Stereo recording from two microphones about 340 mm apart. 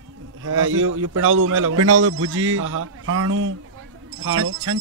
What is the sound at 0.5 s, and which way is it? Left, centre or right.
A man's voice, right.